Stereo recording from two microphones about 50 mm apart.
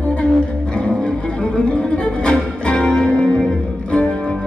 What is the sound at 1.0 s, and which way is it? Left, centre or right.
Music, centre.